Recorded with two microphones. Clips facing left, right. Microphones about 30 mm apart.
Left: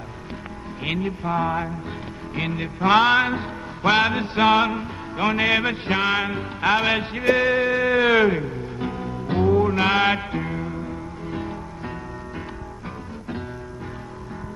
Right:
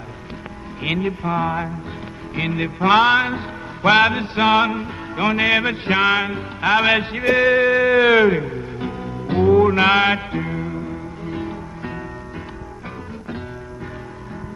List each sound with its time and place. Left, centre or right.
0.8 s music: centre
6.8 s a sound: centre
9.5 s music: right
10.0 s music: centre